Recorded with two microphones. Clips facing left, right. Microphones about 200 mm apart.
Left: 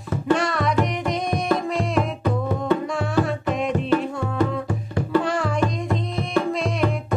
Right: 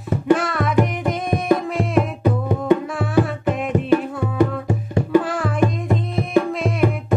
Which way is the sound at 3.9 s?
20° right (ahead or behind).